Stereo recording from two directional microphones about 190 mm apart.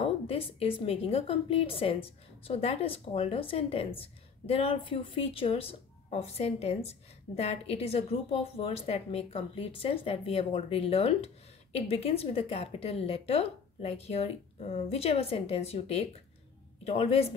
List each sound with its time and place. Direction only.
0.0 s speech: 30° left (ahead or behind)